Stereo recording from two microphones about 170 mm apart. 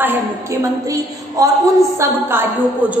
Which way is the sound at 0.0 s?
15° right (ahead or behind).